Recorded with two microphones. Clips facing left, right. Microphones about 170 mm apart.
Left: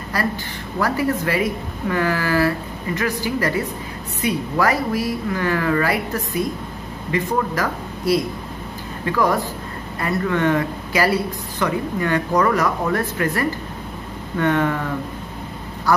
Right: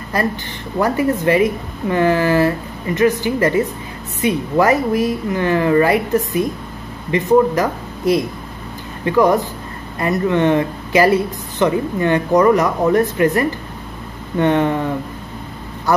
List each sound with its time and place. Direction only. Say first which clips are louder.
0.1 s speech: right 4 dB; 20° right (ahead or behind)